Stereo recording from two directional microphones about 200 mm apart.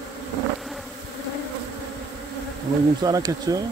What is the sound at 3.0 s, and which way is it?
Speech, 20° right (ahead or behind).